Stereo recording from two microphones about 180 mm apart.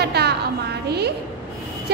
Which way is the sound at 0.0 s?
65° right (ahead or behind).